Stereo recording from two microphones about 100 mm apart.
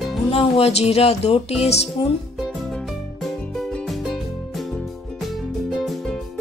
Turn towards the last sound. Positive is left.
turn(degrees=0)  # may be behind; listen again after turning